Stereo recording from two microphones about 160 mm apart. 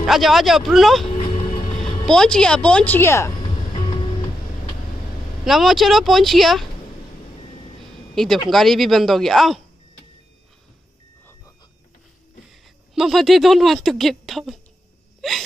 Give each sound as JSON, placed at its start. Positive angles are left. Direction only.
{"t": 0.0, "sound": "speech", "side_deg": 0}
{"t": 1.0, "sound": "a sound", "side_deg": 35}
{"t": 2.0, "sound": "speech", "side_deg": 5}
{"t": 3.4, "sound": "music", "side_deg": 30}
{"t": 5.4, "sound": "speech", "side_deg": 0}
{"t": 8.1, "sound": "speech", "side_deg": 0}
{"t": 12.9, "sound": "speech", "side_deg": 0}